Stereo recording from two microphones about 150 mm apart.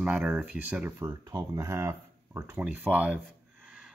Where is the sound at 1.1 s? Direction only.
25° right (ahead or behind).